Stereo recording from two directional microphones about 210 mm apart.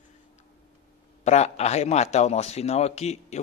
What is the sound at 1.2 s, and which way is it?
Speech, 30° left (ahead or behind).